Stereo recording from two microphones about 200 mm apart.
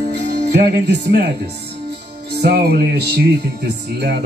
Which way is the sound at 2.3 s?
55° right (ahead or behind).